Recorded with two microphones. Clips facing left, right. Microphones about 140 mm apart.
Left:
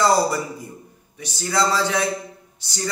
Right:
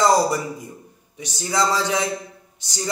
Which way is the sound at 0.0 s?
20° right (ahead or behind).